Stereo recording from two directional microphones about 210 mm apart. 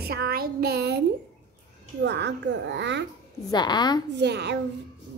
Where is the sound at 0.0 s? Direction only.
50° right (ahead or behind).